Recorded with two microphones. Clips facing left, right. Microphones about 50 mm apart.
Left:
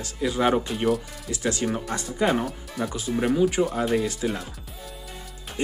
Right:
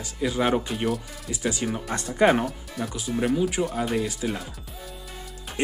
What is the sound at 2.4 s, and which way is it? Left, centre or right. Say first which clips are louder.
Speech: left 1 dB; centre.